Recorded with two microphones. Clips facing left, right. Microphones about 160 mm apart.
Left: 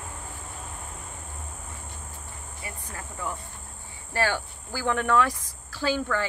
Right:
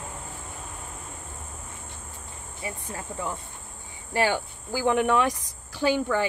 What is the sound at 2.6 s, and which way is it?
Speech, 25° right (ahead or behind).